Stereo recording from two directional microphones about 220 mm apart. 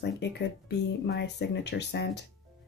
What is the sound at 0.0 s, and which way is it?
Speech, 50° left (ahead or behind).